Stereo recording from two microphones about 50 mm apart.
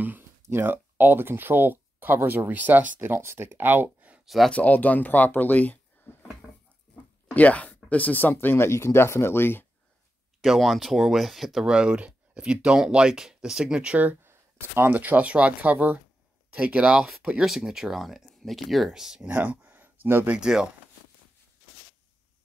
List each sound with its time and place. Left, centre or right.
0.5 s speech: right
4.5 s speech: left
7.3 s speech: left
8.3 s speech: left
8.6 s speech: left
10.4 s speech: centre
11.6 s speech: centre
14.2 s a sound: right
14.9 s speech: right; by 18.9 s centre
18.9 s speech: centre
19.2 s a sound: right
20.3 s speech: centre